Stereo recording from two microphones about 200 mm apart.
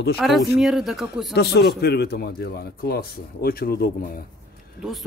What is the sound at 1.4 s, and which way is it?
Speech, 55° left (ahead or behind).